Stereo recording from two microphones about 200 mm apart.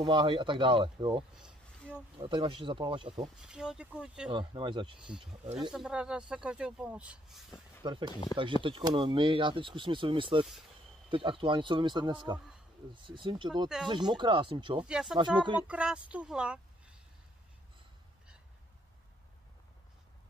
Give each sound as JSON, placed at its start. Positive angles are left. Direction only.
{"t": 0.0, "sound": "speech", "side_deg": -25}
{"t": 1.3, "sound": "a sound", "side_deg": -5}
{"t": 2.1, "sound": "speech", "side_deg": -25}
{"t": 3.4, "sound": "speech", "side_deg": -5}
{"t": 4.3, "sound": "speech", "side_deg": -25}
{"t": 4.9, "sound": "speech", "side_deg": -5}
{"t": 5.2, "sound": "speech", "side_deg": -25}
{"t": 5.6, "sound": "speech", "side_deg": 0}
{"t": 7.8, "sound": "speech", "side_deg": -25}
{"t": 8.1, "sound": "speech", "side_deg": 20}
{"t": 8.6, "sound": "speech", "side_deg": -25}
{"t": 14.9, "sound": "speech", "side_deg": -5}